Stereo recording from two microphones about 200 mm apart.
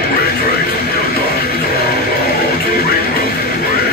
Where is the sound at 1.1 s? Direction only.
50° left (ahead or behind).